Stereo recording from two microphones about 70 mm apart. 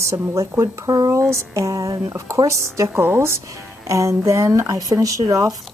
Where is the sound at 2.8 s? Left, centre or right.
Right.